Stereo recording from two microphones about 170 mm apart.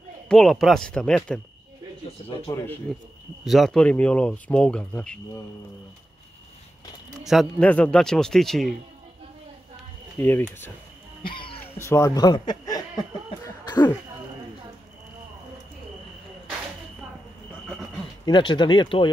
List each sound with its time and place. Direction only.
0.3 s a man's voice: centre (ahead or behind)
2.9 s a man's voice: centre (ahead or behind)
7.2 s a man's voice: 5° left (ahead or behind)
10.1 s speech: 10° left (ahead or behind)
13.4 s cough: 25° left (ahead or behind)
18.2 s speech: 25° left (ahead or behind)